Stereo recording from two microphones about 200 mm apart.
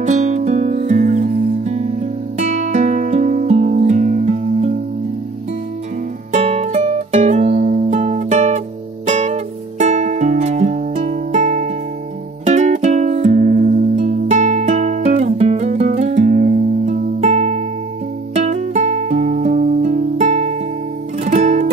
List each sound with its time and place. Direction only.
0.0 s music: 35° right (ahead or behind)
6.3 s music: 35° right (ahead or behind)